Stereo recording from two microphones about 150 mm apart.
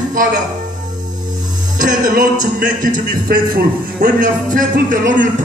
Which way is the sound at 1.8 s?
65° right (ahead or behind).